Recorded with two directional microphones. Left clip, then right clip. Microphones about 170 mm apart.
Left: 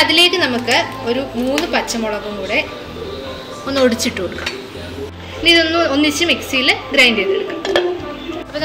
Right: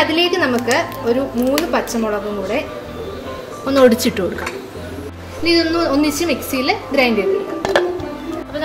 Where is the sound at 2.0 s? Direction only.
45° right (ahead or behind).